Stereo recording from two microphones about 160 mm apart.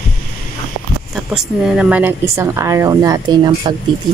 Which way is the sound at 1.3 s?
5° right (ahead or behind).